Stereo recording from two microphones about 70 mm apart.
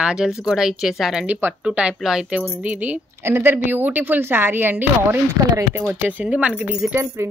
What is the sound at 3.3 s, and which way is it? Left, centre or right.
Speech, right.